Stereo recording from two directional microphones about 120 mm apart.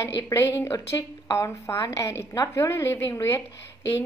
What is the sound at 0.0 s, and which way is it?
A woman's voice, 25° left (ahead or behind).